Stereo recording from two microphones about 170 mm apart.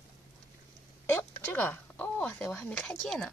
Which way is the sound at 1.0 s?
10° left (ahead or behind).